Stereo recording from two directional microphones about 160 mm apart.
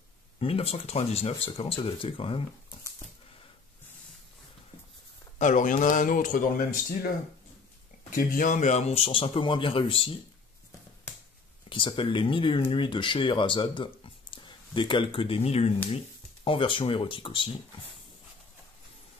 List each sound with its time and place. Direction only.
0.4 s speech: 35° left (ahead or behind)
5.4 s speech: 50° left (ahead or behind)
8.1 s speech: 60° left (ahead or behind); by 10.1 s 35° left (ahead or behind)
11.7 s speech: 30° left (ahead or behind)